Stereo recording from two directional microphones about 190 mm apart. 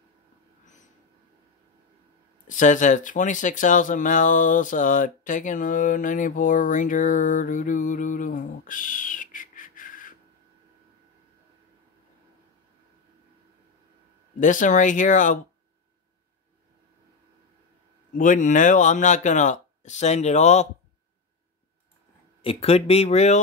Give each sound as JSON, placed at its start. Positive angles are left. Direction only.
{"t": 2.4, "sound": "speech", "side_deg": 40}
{"t": 14.4, "sound": "speech", "side_deg": 40}
{"t": 18.1, "sound": "speech", "side_deg": 45}
{"t": 22.4, "sound": "speech", "side_deg": 30}